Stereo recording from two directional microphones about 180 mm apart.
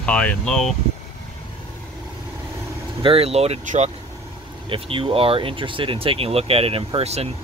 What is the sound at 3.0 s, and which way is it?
Speech, 30° right (ahead or behind).